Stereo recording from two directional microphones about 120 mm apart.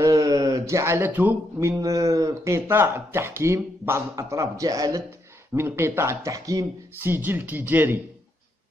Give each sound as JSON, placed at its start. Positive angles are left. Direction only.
{"t": 0.0, "sound": "speech", "side_deg": -25}
{"t": 7.0, "sound": "speech", "side_deg": -15}